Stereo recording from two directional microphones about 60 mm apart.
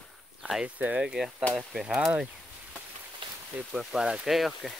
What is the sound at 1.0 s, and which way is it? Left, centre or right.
Speech, centre.